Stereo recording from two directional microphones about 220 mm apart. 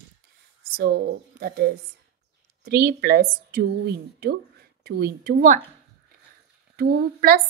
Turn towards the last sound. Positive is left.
turn(degrees=-45)  # may be behind; listen again after turning